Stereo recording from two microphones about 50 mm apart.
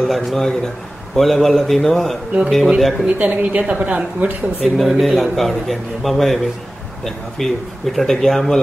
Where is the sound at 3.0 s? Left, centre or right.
Right.